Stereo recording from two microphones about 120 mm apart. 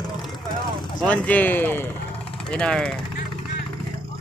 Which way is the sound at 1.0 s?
10° left (ahead or behind).